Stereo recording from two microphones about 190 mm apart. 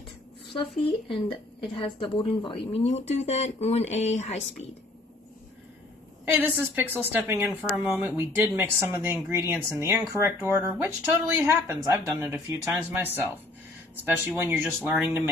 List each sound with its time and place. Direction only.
0.5 s speech: 30° left (ahead or behind)
6.2 s speech: 10° right (ahead or behind)